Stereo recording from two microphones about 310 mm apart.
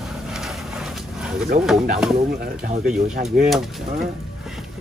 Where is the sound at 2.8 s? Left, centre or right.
Centre.